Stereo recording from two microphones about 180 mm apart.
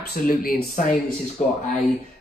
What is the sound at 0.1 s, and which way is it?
Speech, 55° left (ahead or behind).